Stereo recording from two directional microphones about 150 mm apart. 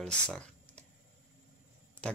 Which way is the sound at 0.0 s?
5° left (ahead or behind).